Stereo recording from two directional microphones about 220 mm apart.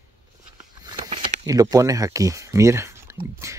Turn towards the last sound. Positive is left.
turn(degrees=-15)  # may be behind; listen again after turning